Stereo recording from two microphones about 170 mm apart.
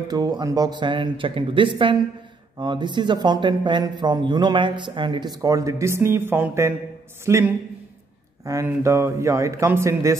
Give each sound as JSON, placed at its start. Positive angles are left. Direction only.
{"t": 0.1, "sound": "speech", "side_deg": -20}